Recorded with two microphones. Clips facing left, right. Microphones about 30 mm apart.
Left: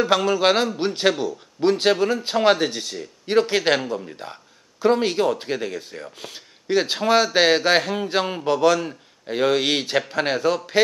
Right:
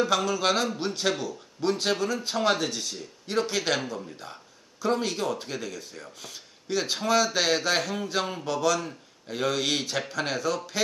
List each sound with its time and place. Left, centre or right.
0.0 s speech: left